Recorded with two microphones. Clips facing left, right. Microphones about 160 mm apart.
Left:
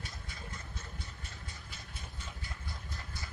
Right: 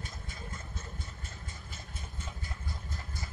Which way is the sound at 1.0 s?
45° right (ahead or behind).